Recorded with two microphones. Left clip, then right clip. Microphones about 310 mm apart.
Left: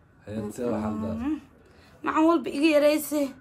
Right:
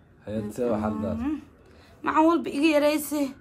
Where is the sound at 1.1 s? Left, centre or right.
Centre.